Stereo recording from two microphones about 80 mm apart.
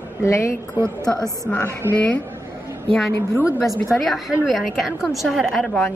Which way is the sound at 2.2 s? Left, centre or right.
Right.